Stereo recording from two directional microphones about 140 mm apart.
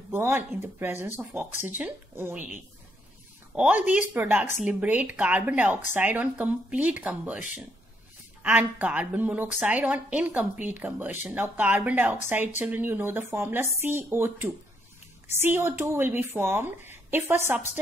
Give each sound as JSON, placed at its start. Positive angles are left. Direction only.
{"t": 0.1, "sound": "speech", "side_deg": -15}
{"t": 3.5, "sound": "speech", "side_deg": -10}